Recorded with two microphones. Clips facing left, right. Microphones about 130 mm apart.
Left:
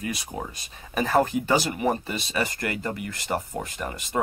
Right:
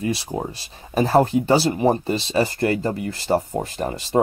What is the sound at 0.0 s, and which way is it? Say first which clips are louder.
Speech: right 7 dB; 30° right (ahead or behind).